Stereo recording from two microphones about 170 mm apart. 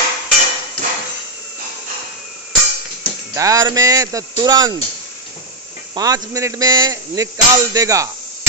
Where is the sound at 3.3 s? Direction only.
20° right (ahead or behind).